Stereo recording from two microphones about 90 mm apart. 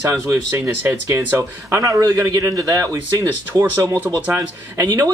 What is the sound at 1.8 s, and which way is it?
A man's voice, 40° right (ahead or behind).